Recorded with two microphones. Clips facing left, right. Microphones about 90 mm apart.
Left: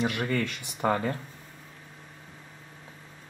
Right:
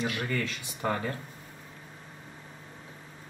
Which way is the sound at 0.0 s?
20° left (ahead or behind).